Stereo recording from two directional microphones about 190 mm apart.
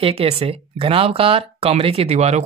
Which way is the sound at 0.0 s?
30° right (ahead or behind).